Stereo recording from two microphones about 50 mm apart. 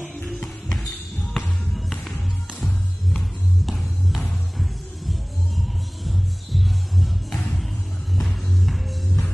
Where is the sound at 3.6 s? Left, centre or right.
Centre.